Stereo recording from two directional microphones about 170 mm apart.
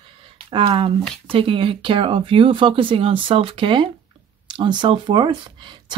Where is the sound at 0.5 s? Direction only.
30° right (ahead or behind).